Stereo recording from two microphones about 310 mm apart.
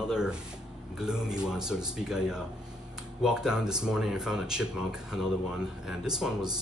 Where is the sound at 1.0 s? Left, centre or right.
Centre.